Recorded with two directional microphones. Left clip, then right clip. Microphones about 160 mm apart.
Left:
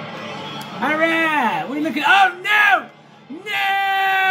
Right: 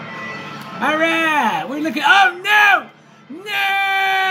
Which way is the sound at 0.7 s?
20° right (ahead or behind).